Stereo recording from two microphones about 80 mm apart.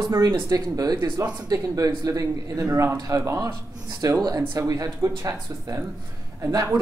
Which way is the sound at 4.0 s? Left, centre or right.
Right.